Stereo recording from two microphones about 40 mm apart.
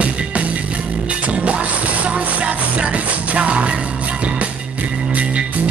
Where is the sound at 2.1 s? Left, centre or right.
Right.